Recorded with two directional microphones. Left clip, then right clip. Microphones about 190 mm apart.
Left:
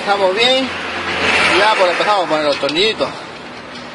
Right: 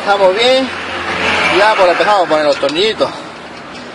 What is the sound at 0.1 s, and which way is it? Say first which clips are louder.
Speech: right 4 dB; 15° right (ahead or behind).